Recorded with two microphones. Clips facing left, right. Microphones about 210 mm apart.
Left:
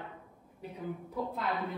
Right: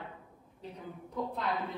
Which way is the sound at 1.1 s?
Centre (ahead or behind).